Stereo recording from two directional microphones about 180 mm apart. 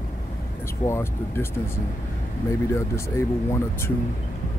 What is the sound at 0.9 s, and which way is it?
Speech, 15° left (ahead or behind).